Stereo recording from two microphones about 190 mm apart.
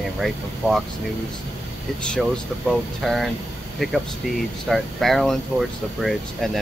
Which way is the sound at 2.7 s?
Centre (ahead or behind).